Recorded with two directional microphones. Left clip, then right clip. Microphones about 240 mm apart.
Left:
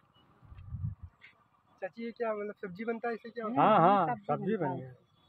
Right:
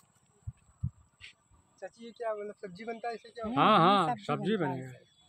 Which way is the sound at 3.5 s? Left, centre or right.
Right.